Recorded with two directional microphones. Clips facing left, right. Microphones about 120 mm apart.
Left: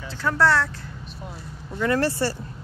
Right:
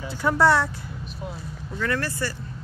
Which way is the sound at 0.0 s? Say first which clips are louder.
Right 2 dB; 15° right (ahead or behind).